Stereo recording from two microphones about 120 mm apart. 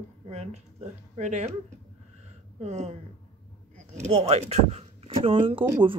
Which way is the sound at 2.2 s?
70° right (ahead or behind).